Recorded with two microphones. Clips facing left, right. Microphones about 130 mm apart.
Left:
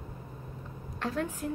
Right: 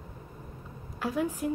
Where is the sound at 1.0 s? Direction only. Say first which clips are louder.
Right 3 dB; 10° right (ahead or behind).